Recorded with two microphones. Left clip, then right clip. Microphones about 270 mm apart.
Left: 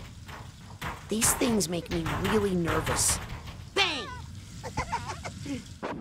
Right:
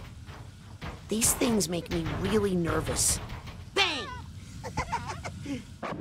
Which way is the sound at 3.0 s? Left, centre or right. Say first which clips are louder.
Left 1 dB; centre.